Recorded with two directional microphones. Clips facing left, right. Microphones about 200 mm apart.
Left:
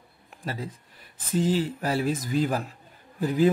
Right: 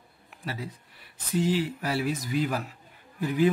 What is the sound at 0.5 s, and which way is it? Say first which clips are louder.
Speech: left 2 dB; 45° left (ahead or behind).